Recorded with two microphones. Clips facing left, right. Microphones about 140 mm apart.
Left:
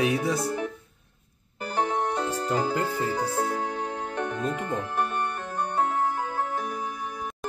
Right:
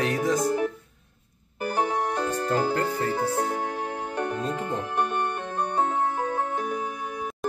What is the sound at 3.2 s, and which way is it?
Music, 10° right (ahead or behind).